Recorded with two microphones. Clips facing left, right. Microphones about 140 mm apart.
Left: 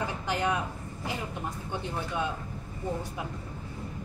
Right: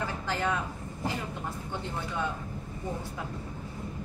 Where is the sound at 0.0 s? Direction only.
15° left (ahead or behind).